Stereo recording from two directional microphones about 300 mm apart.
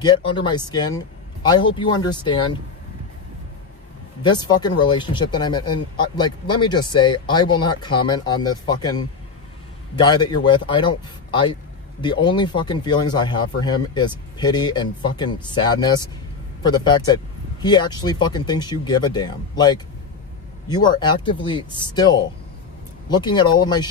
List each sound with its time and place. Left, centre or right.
0.0 s speech: centre
4.2 s speech: centre